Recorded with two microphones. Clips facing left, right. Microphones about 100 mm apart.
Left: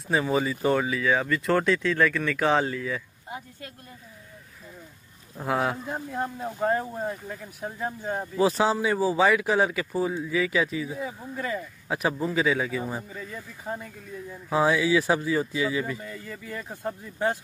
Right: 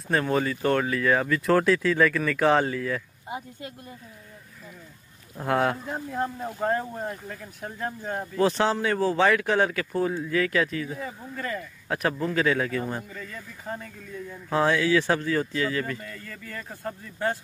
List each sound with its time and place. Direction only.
0.1 s speech: 5° left (ahead or behind)
3.3 s speech: 20° right (ahead or behind)
5.4 s speech: centre (ahead or behind)